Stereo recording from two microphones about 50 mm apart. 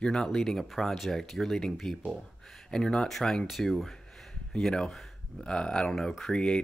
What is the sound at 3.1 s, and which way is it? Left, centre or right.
Speech, centre.